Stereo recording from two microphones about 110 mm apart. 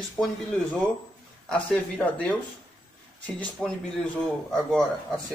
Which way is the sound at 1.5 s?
10° left (ahead or behind).